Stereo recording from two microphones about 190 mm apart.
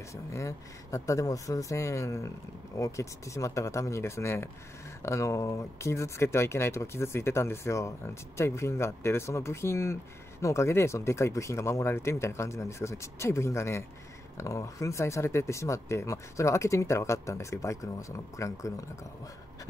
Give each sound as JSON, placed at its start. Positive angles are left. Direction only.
{"t": 0.1, "sound": "speech", "side_deg": 15}